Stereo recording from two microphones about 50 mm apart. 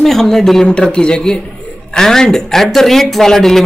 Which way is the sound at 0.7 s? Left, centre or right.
Centre.